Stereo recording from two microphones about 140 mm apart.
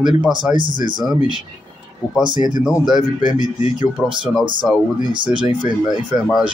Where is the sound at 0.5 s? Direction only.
35° right (ahead or behind).